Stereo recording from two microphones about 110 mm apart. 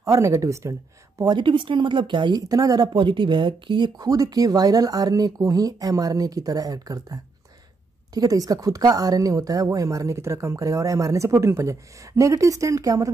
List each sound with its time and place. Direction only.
0.0 s a woman's voice: 30° right (ahead or behind); by 2.4 s 45° right (ahead or behind)
2.4 s a woman's voice: 35° right (ahead or behind)